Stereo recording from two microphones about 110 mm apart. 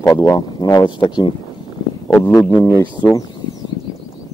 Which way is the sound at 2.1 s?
20° left (ahead or behind).